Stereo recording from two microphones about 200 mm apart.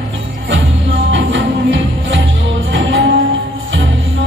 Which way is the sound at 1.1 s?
70° right (ahead or behind).